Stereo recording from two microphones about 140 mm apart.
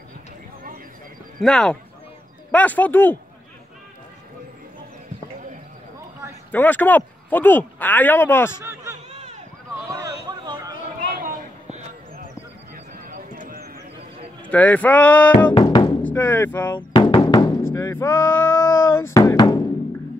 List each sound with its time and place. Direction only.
1.4 s speech: 5° left (ahead or behind)
6.5 s speech: 10° left (ahead or behind)
9.8 s a sound: 25° right (ahead or behind)
11.1 s a sound: 90° right
13.1 s clip-clop: 80° right
14.5 s speech: 10° left (ahead or behind)
15.6 s music: 35° left (ahead or behind)
16.0 s speech: 15° left (ahead or behind)
16.7 s music: 35° left (ahead or behind)
17.6 s a sound: 20° left (ahead or behind)